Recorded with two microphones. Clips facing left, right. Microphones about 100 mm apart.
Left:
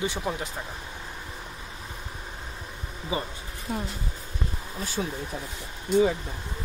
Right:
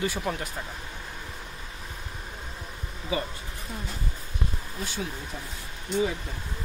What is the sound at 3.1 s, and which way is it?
Speech, 30° left (ahead or behind).